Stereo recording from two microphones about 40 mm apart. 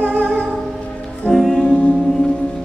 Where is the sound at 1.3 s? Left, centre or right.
Centre.